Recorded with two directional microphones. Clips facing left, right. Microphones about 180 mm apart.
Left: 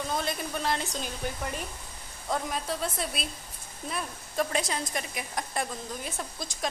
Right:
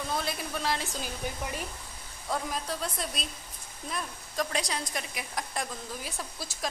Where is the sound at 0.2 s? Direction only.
Centre (ahead or behind).